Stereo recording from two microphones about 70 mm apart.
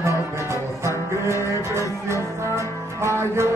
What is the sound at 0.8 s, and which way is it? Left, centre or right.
Music, right.